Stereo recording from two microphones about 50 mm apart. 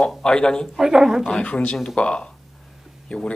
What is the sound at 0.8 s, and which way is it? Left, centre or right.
Speech, centre.